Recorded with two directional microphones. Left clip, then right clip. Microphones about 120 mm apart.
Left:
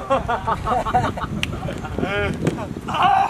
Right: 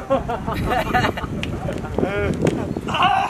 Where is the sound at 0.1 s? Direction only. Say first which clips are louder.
Left 2 dB; 45° left (ahead or behind).